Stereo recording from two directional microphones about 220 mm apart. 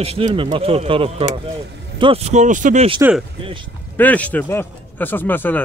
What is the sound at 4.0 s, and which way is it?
Speech, 5° left (ahead or behind).